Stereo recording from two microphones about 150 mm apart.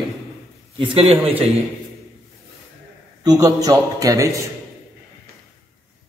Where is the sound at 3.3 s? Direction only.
20° right (ahead or behind).